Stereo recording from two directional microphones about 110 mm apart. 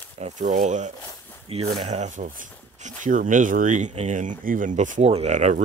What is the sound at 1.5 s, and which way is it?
Speech, 65° right (ahead or behind).